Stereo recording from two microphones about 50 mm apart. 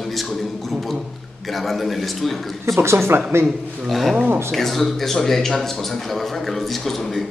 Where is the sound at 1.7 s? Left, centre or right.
Centre.